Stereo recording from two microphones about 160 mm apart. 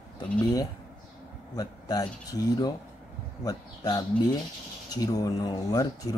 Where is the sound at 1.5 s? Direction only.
25° left (ahead or behind).